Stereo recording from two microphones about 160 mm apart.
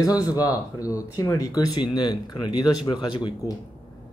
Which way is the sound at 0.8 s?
20° left (ahead or behind).